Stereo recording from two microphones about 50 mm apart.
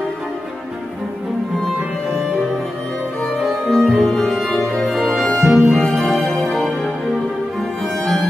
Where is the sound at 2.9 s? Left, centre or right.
Centre.